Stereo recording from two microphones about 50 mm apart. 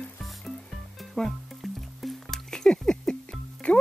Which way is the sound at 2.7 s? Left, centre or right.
Centre.